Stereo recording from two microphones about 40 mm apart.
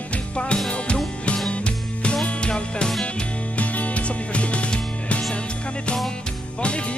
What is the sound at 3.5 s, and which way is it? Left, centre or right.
Music, left.